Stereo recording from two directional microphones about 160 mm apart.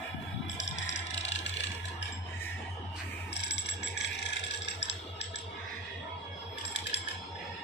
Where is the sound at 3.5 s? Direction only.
90° left.